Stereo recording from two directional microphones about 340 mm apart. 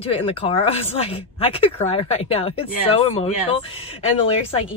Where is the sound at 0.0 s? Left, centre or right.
Centre.